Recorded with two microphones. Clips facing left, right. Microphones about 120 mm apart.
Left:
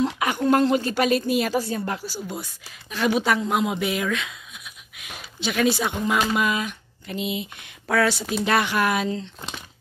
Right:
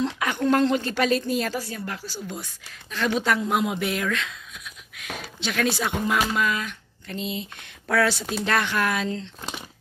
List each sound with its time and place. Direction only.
0.0 s a woman's voice: 10° left (ahead or behind)
1.6 s speech: 25° left (ahead or behind)
2.0 s speech: 10° left (ahead or behind)
6.3 s speech: 15° left (ahead or behind)
7.9 s speech: centre (ahead or behind)